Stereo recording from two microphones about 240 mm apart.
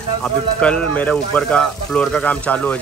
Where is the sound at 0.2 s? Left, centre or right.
Centre.